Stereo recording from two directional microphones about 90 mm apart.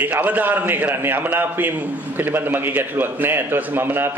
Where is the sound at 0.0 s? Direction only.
20° right (ahead or behind).